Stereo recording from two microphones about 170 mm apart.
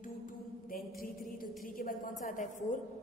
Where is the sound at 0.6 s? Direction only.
55° left (ahead or behind).